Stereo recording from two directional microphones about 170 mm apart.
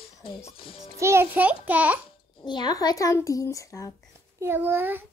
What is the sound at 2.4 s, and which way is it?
Speech, 25° left (ahead or behind).